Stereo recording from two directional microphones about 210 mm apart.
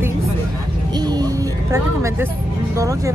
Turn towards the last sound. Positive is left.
turn(degrees=-15)  # may be behind; listen again after turning